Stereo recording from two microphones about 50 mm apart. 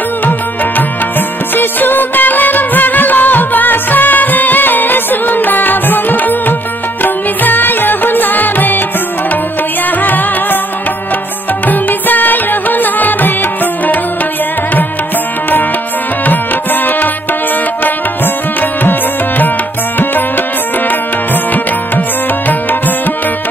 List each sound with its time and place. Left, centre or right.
1.5 s music: left
10.0 s music: left
11.6 s music: left
17.8 s music: left